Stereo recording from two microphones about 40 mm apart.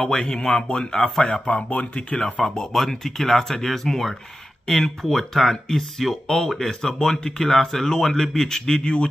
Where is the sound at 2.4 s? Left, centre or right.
Centre.